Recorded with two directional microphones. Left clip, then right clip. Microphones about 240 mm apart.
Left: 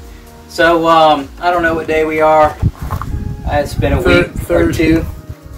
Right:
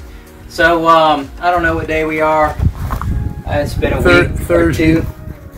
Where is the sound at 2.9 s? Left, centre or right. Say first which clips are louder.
Right 1 dB; right.